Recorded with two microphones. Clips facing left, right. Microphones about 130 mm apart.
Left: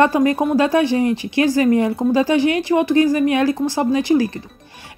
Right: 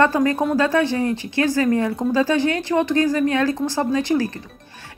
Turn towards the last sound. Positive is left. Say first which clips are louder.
# left 4 dB
turn(degrees=15)  # may be behind; listen again after turning